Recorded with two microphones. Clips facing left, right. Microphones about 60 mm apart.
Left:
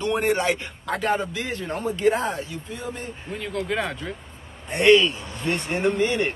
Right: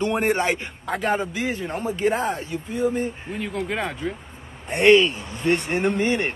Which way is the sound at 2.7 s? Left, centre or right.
Centre.